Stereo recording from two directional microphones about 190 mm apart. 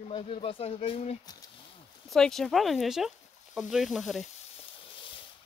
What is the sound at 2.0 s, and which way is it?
Speech, centre (ahead or behind).